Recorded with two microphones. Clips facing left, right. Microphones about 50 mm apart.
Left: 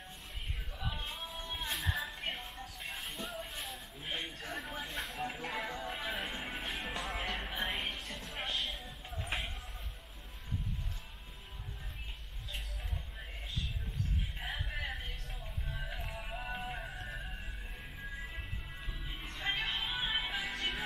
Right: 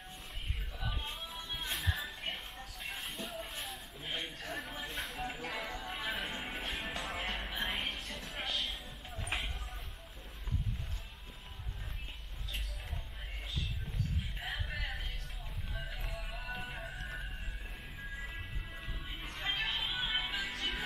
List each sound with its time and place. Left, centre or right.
1.0 s music: centre
2.8 s a sound: centre
5.4 s music: centre
14.4 s a sound: centre
16.2 s music: left
16.6 s music: centre
18.2 s music: centre
19.4 s music: centre